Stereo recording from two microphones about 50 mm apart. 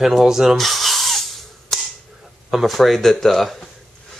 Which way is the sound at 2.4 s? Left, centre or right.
Centre.